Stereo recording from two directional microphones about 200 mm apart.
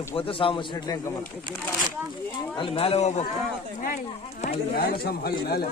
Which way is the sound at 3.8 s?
45° left (ahead or behind).